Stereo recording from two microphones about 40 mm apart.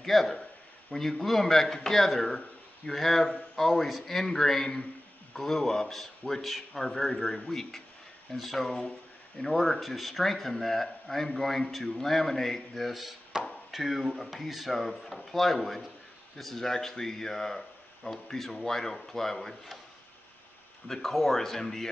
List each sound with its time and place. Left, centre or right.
0.0 s a man's voice: centre
0.3 s a sound: left
0.9 s a man's voice: centre
13.3 s chop: centre
13.7 s a man's voice: centre
20.9 s a man's voice: centre
21.4 s speech: centre